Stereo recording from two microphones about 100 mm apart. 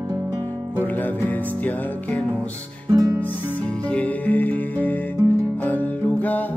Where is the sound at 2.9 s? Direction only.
35° right (ahead or behind).